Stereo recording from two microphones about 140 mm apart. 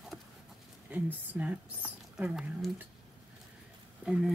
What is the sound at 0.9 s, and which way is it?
Speech, 10° right (ahead or behind).